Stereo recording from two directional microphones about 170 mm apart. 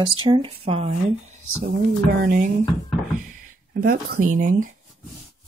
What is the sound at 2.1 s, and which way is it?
Speech, 60° right (ahead or behind).